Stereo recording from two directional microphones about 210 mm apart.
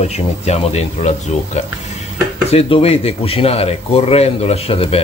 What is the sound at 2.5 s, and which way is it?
Speech, 30° left (ahead or behind).